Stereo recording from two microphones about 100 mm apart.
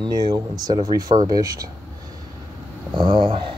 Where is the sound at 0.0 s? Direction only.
45° right (ahead or behind).